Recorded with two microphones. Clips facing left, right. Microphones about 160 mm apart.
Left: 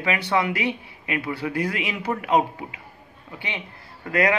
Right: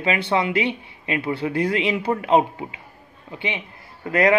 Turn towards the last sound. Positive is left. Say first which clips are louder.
# right 3 dB
turn(degrees=-25)  # may be behind; listen again after turning